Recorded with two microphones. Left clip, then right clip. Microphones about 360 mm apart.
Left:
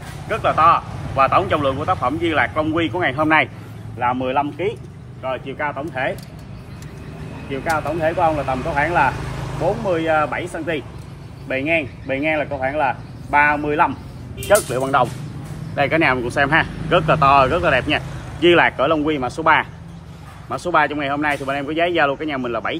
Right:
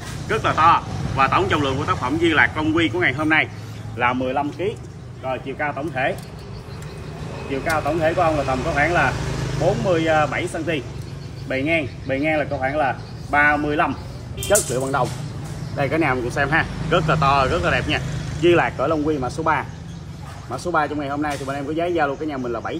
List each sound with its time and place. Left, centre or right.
0.3 s speech: centre
7.6 s speech: centre
14.7 s speech: left